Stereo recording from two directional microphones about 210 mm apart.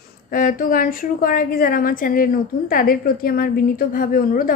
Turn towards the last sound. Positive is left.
turn(degrees=40)  # may be behind; listen again after turning